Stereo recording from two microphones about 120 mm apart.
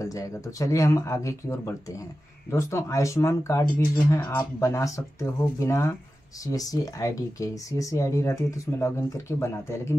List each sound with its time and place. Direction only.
0.0 s speech: 30° left (ahead or behind)